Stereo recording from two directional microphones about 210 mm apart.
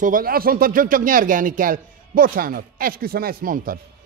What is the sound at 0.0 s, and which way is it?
Speech, 40° right (ahead or behind).